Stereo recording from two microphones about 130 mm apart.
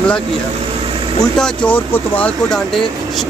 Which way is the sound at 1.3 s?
5° left (ahead or behind).